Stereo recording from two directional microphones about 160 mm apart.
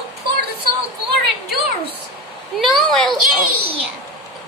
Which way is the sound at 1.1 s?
85° right.